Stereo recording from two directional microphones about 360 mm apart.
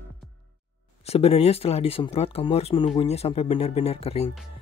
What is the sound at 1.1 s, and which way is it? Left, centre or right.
Speech, centre.